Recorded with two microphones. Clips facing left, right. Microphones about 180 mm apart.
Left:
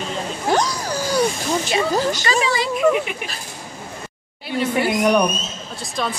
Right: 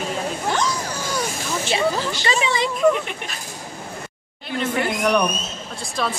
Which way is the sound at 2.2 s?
25° right (ahead or behind).